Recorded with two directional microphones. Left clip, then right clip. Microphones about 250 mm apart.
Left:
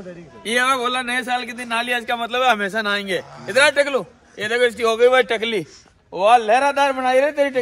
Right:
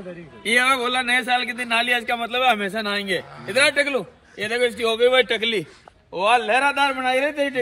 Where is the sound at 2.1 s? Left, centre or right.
Centre.